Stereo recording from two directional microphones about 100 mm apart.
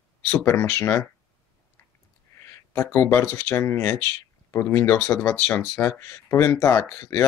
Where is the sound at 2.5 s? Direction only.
25° left (ahead or behind).